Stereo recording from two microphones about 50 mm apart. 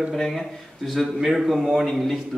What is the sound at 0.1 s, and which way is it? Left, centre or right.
A man's voice, centre.